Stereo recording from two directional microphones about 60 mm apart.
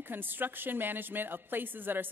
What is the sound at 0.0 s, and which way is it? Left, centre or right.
Speech, right.